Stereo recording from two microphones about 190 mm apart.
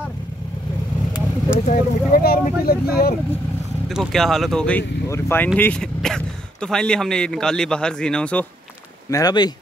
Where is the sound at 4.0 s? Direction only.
Centre (ahead or behind).